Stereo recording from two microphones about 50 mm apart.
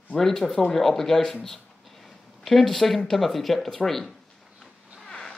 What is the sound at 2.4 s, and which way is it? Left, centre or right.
Speech, centre.